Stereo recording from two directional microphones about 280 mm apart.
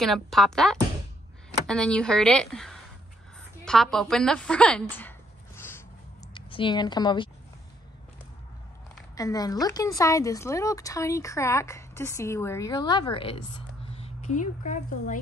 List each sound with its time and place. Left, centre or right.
0.0 s a woman's voice: centre
5.6 s a sound: centre
6.3 s speech: centre
9.1 s a woman's voice: centre